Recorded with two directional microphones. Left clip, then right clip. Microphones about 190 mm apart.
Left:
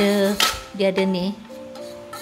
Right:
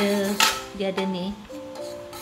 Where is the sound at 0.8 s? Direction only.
45° left (ahead or behind).